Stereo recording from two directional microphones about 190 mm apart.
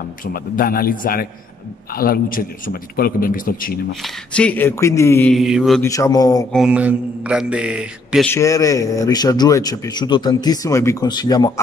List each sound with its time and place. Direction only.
0.2 s a man's voice: 50° left (ahead or behind)
4.0 s speech: 5° left (ahead or behind)
5.3 s mantra: centre (ahead or behind)
5.8 s speech: 15° left (ahead or behind)
6.5 s mantra: 5° right (ahead or behind)
8.3 s a man's voice: 15° left (ahead or behind)